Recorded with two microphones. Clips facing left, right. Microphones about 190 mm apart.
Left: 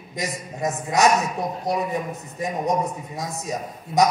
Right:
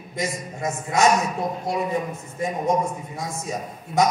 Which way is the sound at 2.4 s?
20° left (ahead or behind).